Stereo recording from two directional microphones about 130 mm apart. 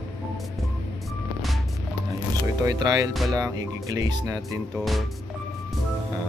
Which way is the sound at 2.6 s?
30° right (ahead or behind).